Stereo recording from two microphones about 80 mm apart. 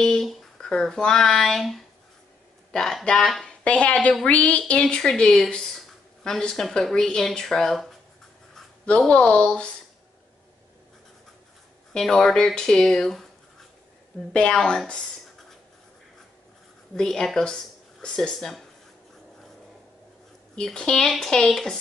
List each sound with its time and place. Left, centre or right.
0.0 s speech: centre
3.6 s speech: centre
8.8 s speech: centre
11.9 s speech: centre
16.9 s speech: centre
20.5 s speech: centre